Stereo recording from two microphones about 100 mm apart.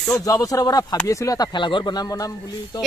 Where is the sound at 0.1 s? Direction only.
35° left (ahead or behind).